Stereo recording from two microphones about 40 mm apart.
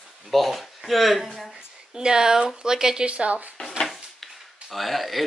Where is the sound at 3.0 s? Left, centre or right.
Right.